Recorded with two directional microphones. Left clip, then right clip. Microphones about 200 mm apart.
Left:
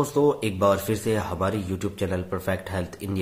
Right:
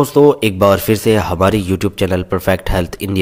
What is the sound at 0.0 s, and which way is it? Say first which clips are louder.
Speech: right 12 dB; 35° right (ahead or behind).